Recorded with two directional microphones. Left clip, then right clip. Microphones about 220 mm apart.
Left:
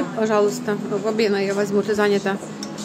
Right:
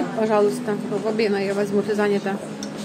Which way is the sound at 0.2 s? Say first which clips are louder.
Even; 5° left (ahead or behind).